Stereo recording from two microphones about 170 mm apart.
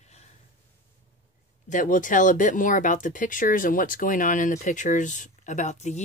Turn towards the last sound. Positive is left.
turn(degrees=45)  # may be behind; listen again after turning